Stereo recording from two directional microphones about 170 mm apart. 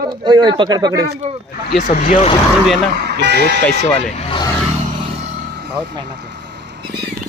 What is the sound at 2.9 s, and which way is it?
Speech, 70° right (ahead or behind).